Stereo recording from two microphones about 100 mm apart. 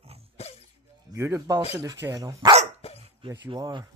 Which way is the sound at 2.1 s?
40° right (ahead or behind).